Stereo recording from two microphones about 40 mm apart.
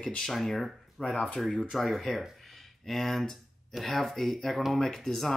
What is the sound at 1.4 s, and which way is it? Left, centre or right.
Speech, centre.